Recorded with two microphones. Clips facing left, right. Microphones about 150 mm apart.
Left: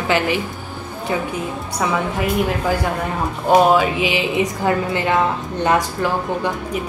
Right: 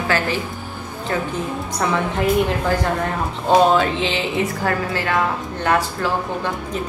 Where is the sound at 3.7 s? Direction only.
10° left (ahead or behind).